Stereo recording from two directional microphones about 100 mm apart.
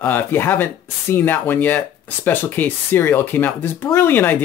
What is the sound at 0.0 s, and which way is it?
Speech, 20° left (ahead or behind).